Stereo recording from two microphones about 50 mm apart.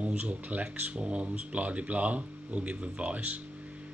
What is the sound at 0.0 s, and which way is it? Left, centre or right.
Speech, right.